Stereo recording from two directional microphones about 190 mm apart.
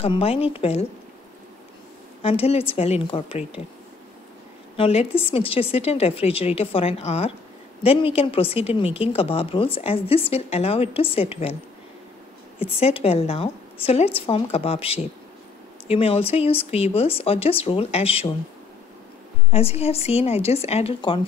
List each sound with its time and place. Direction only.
0.0 s a woman's voice: 30° left (ahead or behind)
2.2 s a woman's voice: 30° left (ahead or behind)
4.7 s a woman's voice: 30° left (ahead or behind)
12.5 s a woman's voice: 30° left (ahead or behind)
19.5 s a woman's voice: 30° left (ahead or behind)